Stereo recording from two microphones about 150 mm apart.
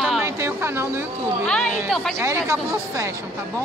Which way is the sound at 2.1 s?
20° right (ahead or behind).